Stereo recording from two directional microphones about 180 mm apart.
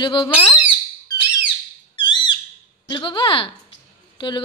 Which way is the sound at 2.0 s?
25° left (ahead or behind).